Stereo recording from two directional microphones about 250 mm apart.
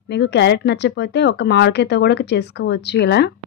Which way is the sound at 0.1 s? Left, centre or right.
Left.